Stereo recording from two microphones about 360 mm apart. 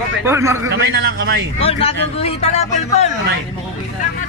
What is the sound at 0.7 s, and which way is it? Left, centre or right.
Speech, right.